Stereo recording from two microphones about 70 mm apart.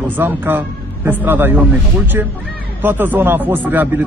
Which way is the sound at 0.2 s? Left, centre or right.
Right.